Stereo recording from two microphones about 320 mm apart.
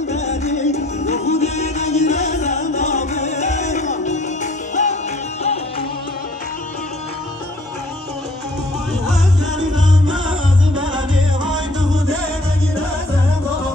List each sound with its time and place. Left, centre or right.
0.1 s music: left